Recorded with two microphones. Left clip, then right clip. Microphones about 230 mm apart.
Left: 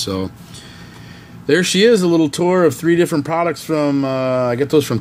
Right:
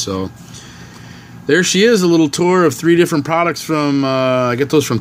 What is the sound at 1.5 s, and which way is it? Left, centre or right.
Speech, centre.